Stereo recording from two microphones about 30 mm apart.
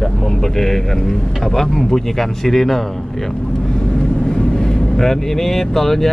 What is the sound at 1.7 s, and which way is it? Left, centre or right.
Speech, centre.